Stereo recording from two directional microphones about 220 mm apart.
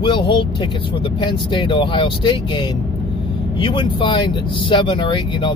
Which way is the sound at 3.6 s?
20° left (ahead or behind).